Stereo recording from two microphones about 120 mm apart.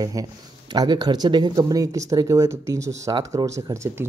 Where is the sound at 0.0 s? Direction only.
30° right (ahead or behind).